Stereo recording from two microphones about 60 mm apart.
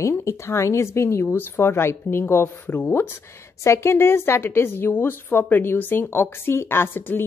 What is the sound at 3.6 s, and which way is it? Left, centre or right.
A woman's voice, left.